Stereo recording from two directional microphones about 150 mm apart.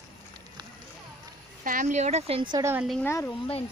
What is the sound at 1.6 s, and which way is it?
Speech, 60° right (ahead or behind).